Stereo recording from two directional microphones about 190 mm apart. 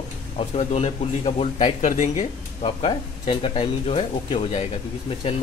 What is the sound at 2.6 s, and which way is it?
Speech, 30° left (ahead or behind).